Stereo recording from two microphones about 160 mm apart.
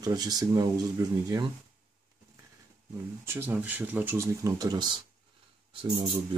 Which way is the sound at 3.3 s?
10° right (ahead or behind).